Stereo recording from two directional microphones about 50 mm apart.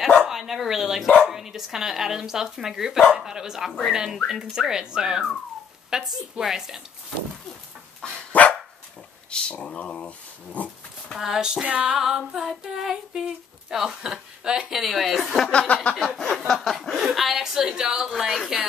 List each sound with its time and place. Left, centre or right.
0.3 s speech: centre
8.3 s dog: left
9.3 s speech: left
11.1 s speech: centre
11.6 s a sound: right
12.0 s speech: centre
15.5 s speech: left
16.2 s speech: centre